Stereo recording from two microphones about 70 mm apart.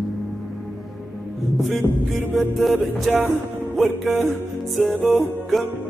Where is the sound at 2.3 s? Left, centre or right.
Centre.